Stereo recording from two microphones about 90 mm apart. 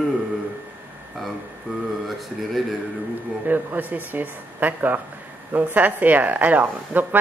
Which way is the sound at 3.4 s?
20° right (ahead or behind).